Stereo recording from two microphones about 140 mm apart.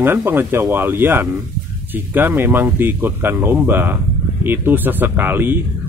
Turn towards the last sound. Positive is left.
turn(degrees=-15)  # may be behind; listen again after turning